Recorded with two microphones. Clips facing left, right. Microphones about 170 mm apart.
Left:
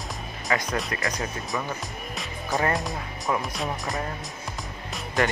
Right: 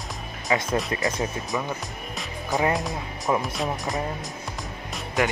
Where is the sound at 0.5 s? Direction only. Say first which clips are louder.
Right 3 dB; 25° right (ahead or behind).